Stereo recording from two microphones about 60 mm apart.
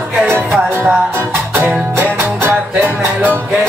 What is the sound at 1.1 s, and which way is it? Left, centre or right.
Music, right.